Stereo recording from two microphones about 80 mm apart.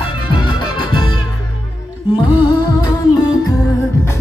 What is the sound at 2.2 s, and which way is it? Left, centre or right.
Music, left.